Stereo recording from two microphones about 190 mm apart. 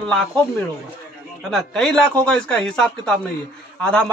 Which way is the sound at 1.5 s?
5° left (ahead or behind).